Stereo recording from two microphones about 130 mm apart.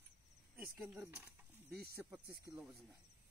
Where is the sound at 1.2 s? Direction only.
10° right (ahead or behind).